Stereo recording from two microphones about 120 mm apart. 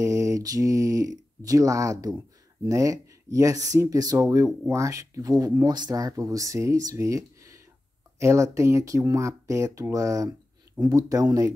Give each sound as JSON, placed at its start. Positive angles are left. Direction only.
{"t": 0.0, "sound": "speech", "side_deg": -25}